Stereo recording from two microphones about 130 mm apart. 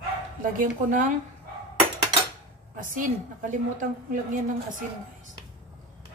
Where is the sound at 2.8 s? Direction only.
90° right.